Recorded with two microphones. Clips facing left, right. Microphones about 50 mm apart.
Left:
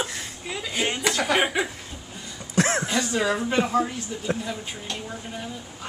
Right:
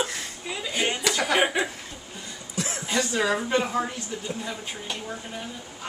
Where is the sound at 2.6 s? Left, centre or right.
Left.